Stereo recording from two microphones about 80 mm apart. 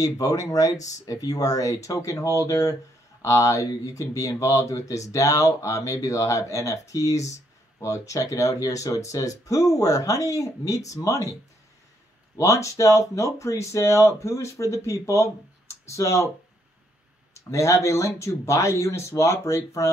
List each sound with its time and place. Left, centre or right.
0.0 s speech: left
12.4 s speech: left
17.3 s speech: left